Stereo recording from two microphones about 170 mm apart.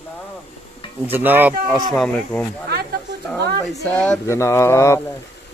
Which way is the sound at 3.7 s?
5° left (ahead or behind).